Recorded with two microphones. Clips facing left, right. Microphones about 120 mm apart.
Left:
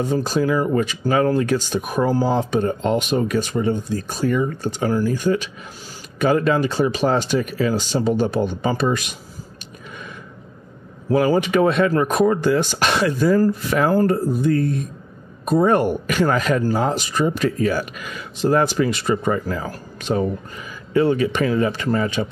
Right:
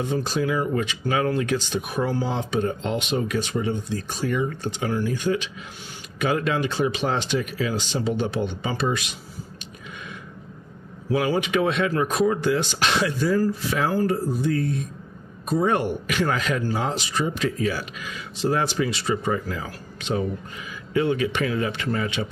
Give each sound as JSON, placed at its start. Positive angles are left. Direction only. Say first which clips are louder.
{"t": 0.0, "sound": "speech", "louder": "left 5 dB", "side_deg": 40}
{"t": 11.1, "sound": "speech", "louder": "left 5 dB", "side_deg": 45}